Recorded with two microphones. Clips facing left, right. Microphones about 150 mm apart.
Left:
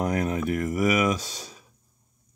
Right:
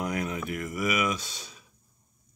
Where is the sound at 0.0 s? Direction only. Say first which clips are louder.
Left 5 dB; 40° left (ahead or behind).